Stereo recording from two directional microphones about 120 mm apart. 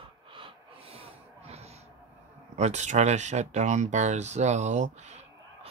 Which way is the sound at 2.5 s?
70° right (ahead or behind).